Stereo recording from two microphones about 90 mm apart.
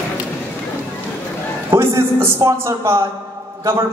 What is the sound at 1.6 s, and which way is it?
A man's voice, 30° right (ahead or behind).